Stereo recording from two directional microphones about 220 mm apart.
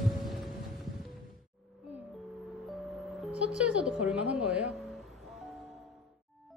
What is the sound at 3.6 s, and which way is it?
A woman's voice, 5° right (ahead or behind).